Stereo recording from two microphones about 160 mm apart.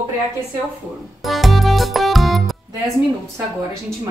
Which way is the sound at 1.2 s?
Centre (ahead or behind).